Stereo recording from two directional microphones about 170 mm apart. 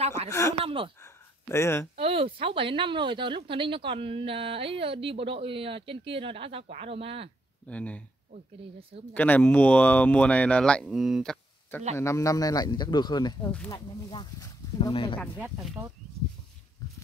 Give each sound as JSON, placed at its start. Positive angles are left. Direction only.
{"t": 0.3, "sound": "speech", "side_deg": 15}
{"t": 0.6, "sound": "speech", "side_deg": -30}
{"t": 1.0, "sound": "a sound", "side_deg": 15}
{"t": 2.0, "sound": "a woman's voice", "side_deg": -35}
{"t": 7.6, "sound": "speech", "side_deg": 10}
{"t": 9.1, "sound": "speech", "side_deg": 10}
{"t": 12.0, "sound": "speech", "side_deg": 15}
{"t": 15.3, "sound": "speech", "side_deg": -10}